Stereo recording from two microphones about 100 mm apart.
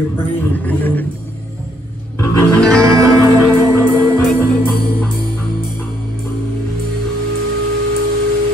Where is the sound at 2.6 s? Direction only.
10° left (ahead or behind).